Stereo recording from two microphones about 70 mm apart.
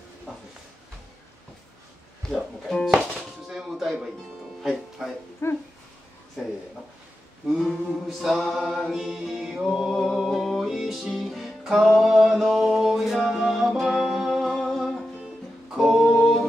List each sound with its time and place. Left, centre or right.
2.2 s music: centre
2.7 s speech: centre
3.2 s a sound: centre
4.6 s music: centre
5.4 s dog: left
7.4 s mantra: centre
8.9 s music: centre